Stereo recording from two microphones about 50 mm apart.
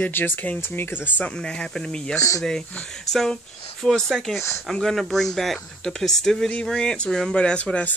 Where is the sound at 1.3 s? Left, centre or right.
Centre.